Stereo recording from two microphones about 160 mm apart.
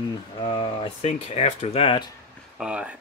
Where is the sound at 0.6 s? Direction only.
40° left (ahead or behind).